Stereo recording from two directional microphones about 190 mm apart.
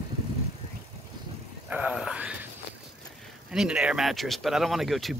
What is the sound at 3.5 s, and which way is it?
Speech, 5° right (ahead or behind).